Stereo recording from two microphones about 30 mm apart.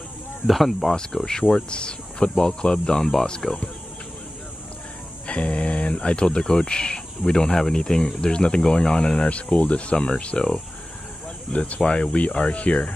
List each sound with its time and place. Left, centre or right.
0.5 s speech: centre
0.9 s speech: left
5.2 s speech: left
9.3 s speech: left
11.5 s speech: left
12.3 s speech: left
12.5 s speech: left